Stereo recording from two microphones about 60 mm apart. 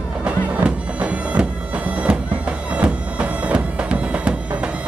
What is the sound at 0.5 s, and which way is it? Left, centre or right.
Bagpipes, right.